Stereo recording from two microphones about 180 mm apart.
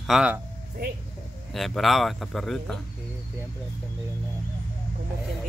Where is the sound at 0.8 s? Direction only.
55° right (ahead or behind).